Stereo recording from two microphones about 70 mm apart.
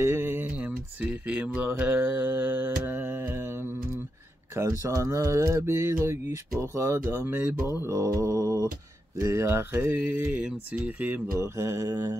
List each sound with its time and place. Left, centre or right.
0.0 s a sound: right
1.0 s speech: right
1.7 s mantra: right
4.6 s speech: right
6.6 s mantra: right
7.9 s mantra: right
9.2 s mantra: right
11.0 s speech: right
11.3 s mantra: right